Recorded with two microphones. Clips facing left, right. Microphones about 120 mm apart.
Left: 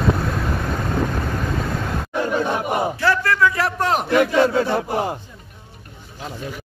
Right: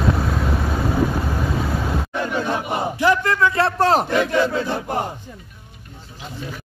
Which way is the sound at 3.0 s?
20° right (ahead or behind).